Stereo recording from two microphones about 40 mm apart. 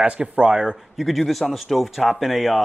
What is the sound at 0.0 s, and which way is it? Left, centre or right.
Speech, right.